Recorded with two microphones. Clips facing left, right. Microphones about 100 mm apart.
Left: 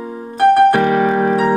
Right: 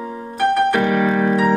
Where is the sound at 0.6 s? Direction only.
30° left (ahead or behind).